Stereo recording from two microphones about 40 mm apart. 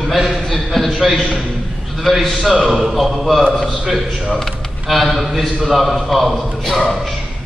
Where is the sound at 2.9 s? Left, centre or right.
Centre.